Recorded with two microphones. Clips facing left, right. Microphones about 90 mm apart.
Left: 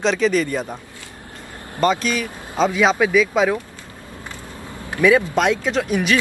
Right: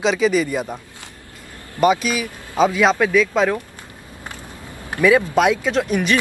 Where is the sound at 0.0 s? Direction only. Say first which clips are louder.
Right 1 dB; 5° right (ahead or behind).